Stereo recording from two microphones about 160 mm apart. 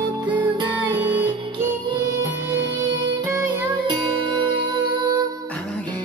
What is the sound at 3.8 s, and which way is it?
Music, 30° right (ahead or behind).